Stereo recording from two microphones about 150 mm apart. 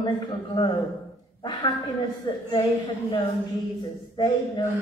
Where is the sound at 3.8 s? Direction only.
30° left (ahead or behind).